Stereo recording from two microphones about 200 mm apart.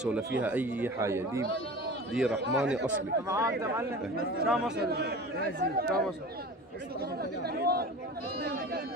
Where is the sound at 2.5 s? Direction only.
5° right (ahead or behind).